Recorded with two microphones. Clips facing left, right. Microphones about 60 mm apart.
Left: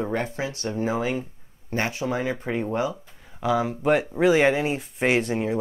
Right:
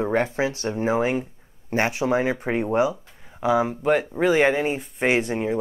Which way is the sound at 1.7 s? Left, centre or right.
Centre.